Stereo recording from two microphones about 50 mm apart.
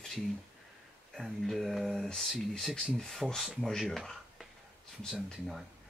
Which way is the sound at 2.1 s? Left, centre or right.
Centre.